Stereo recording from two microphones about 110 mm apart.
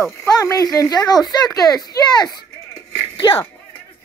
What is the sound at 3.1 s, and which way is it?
Music, 55° left (ahead or behind).